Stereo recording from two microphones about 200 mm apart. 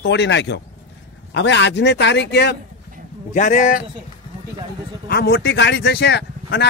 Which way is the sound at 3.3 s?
40° left (ahead or behind).